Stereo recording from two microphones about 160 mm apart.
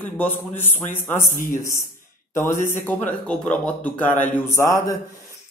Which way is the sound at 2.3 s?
15° left (ahead or behind).